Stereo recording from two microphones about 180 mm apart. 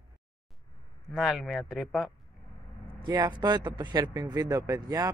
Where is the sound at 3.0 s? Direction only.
20° right (ahead or behind).